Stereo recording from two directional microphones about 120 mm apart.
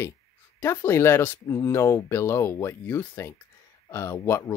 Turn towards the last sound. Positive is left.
turn(degrees=20)  # may be behind; listen again after turning